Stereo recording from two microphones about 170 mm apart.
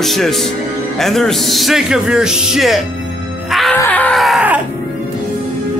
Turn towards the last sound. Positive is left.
turn(degrees=-5)  # may be behind; listen again after turning